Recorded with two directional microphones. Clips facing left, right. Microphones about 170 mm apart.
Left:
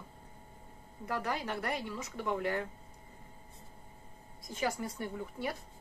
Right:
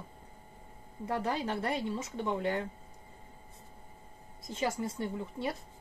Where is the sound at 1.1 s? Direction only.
25° right (ahead or behind).